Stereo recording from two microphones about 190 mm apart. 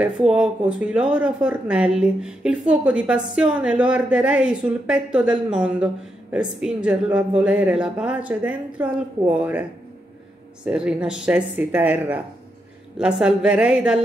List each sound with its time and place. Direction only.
0.0 s a woman's voice: 5° right (ahead or behind)